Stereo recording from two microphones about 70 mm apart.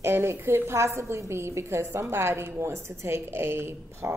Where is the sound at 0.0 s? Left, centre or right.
Right.